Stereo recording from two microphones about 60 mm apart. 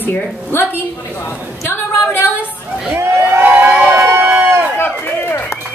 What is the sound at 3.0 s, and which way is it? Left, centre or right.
Vehicle, right.